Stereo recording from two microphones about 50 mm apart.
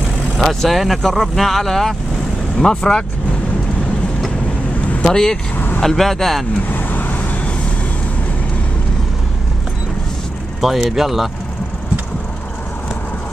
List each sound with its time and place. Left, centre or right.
0.4 s speech: centre
5.0 s speech: centre
6.7 s vehicle: left
10.6 s speech: centre